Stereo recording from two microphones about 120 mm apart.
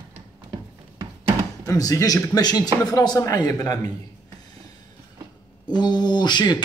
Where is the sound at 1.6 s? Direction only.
30° left (ahead or behind).